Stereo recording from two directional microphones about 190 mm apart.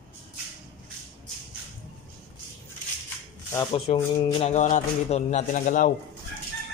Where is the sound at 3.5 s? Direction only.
15° left (ahead or behind).